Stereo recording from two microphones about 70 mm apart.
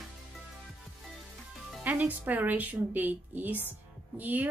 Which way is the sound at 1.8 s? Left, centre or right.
Right.